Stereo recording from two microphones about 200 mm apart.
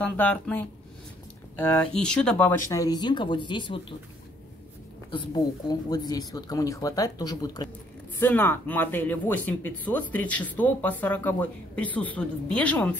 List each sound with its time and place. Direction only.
0.0 s speech: 10° left (ahead or behind); by 3.8 s 25° left (ahead or behind)
5.1 s speech: 20° left (ahead or behind); by 12.9 s 5° left (ahead or behind)